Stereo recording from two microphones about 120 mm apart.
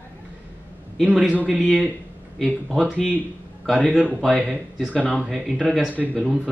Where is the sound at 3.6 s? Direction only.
Centre (ahead or behind).